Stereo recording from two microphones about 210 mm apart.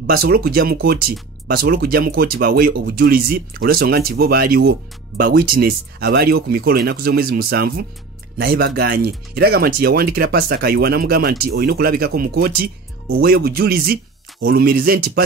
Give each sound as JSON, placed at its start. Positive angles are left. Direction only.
{"t": 0.0, "sound": "speech", "side_deg": -45}